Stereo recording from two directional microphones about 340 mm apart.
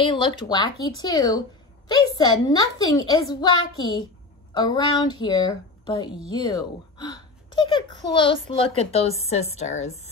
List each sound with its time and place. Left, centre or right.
0.0 s a woman's voice: centre